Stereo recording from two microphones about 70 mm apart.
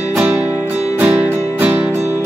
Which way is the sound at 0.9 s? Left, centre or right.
Right.